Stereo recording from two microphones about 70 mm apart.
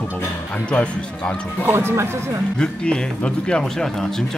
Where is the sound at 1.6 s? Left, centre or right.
Right.